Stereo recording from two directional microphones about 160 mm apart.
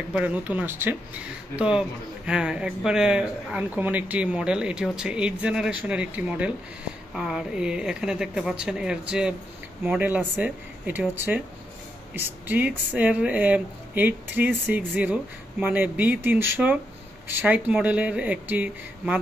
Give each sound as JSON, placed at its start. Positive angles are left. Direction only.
{"t": 0.1, "sound": "speech", "side_deg": -10}